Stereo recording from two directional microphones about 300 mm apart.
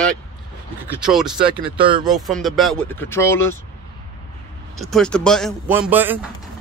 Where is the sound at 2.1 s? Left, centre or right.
Centre.